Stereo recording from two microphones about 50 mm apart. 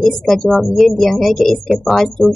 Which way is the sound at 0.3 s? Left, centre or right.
Centre.